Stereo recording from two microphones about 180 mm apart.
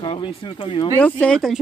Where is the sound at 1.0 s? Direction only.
5° left (ahead or behind).